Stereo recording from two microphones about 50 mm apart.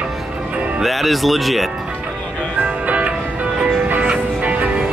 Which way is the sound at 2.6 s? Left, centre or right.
Right.